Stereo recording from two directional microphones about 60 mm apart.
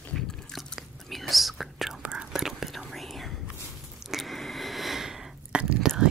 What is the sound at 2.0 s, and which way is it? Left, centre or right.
Whispering, centre.